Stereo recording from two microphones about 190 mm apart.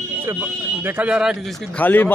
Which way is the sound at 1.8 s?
10° left (ahead or behind).